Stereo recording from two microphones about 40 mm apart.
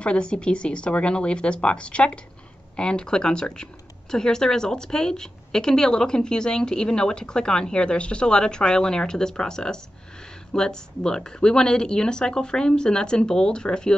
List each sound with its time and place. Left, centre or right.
0.0 s a woman's voice: left